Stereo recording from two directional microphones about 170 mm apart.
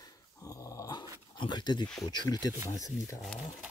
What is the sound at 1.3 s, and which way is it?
Speech, 25° left (ahead or behind).